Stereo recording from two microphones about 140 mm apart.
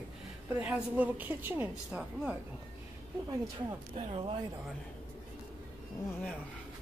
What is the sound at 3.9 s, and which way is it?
Speech, 40° right (ahead or behind).